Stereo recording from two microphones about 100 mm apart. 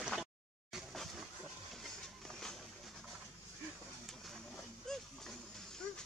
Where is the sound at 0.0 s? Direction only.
Centre (ahead or behind).